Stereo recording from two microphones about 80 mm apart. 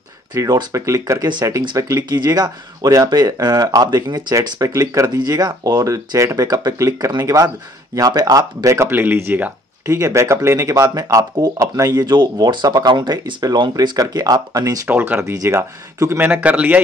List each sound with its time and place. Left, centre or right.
0.3 s speech: right
2.0 s speech: right
4.6 s speech: right
5.1 s speech: right
9.8 s speech: right
14.9 s a man's voice: right
15.3 s speech: right
16.2 s a man's voice: right